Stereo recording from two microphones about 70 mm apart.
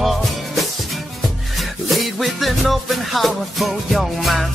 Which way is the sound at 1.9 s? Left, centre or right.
Centre.